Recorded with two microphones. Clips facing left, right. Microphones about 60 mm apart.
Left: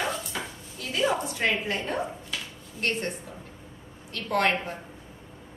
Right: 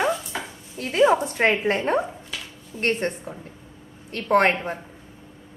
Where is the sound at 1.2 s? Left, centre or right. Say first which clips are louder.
Right 6 dB; right.